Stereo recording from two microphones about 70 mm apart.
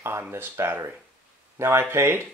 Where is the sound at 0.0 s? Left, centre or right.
Right.